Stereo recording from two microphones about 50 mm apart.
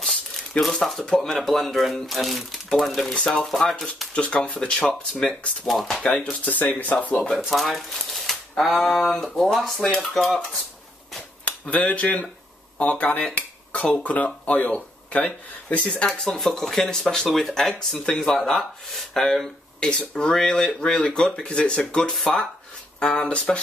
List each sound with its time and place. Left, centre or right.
0.0 s a sound: centre
0.8 s speech: centre
4.1 s speech: left
4.6 s speech: centre
5.7 s speech: centre
6.3 s speech: left
7.2 s speech: centre
8.1 s typewriter: centre
9.4 s speech: centre
11.7 s speech: left
13.3 s a sound: left
13.9 s speech: left
16.3 s speech: centre; by 23.6 s left